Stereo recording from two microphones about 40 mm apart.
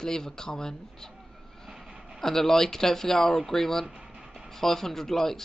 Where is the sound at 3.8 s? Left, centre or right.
Centre.